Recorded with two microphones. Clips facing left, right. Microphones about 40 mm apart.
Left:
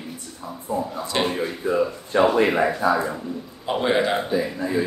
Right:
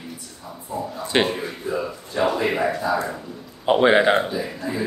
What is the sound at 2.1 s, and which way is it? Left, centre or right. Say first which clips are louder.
Speech: left 4 dB; left.